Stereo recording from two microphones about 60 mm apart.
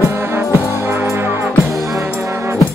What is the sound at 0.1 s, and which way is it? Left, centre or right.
Music, right.